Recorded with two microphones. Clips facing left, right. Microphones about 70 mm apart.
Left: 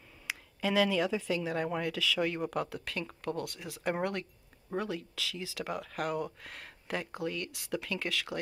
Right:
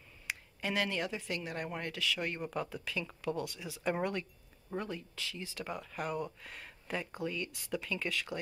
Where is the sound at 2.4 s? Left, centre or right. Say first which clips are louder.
Left 4 dB; left.